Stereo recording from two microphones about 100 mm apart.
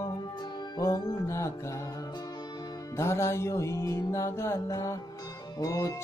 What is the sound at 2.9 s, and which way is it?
Music, 25° left (ahead or behind).